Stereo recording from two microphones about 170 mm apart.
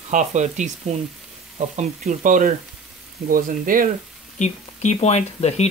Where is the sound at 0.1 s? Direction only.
45° right (ahead or behind).